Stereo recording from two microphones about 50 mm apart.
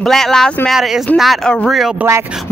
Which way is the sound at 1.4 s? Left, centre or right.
Centre.